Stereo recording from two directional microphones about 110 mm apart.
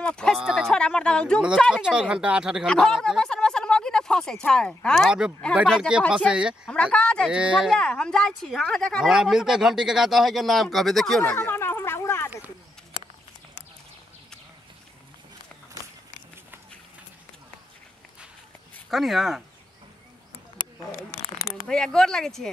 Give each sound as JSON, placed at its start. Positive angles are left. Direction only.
{"t": 0.0, "sound": "speech", "side_deg": 10}
{"t": 1.7, "sound": "speech", "side_deg": -5}
{"t": 2.6, "sound": "speech", "side_deg": 5}
{"t": 5.8, "sound": "speech", "side_deg": -10}
{"t": 6.7, "sound": "speech", "side_deg": 10}
{"t": 7.2, "sound": "speech", "side_deg": -5}
{"t": 7.8, "sound": "speech", "side_deg": 10}
{"t": 11.3, "sound": "a sound", "side_deg": 20}
{"t": 18.9, "sound": "speech", "side_deg": 0}
{"t": 21.6, "sound": "speech", "side_deg": 5}